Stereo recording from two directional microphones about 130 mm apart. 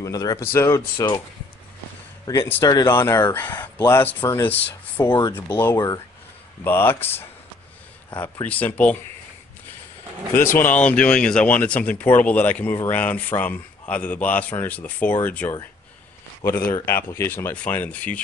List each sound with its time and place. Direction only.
0.0 s speech: 30° left (ahead or behind)
2.2 s speech: 20° left (ahead or behind)
10.7 s speech: 10° left (ahead or behind)